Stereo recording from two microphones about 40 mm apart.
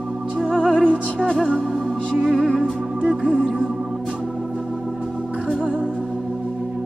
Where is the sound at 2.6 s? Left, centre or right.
Right.